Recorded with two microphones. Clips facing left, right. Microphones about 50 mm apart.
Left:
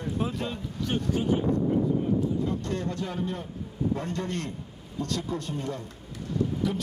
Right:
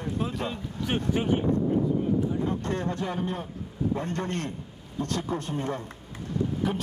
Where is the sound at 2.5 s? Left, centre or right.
Right.